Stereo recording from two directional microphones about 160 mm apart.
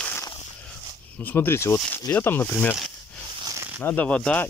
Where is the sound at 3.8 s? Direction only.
10° left (ahead or behind).